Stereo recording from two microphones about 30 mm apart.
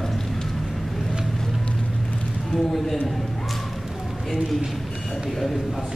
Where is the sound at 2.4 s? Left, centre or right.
Centre.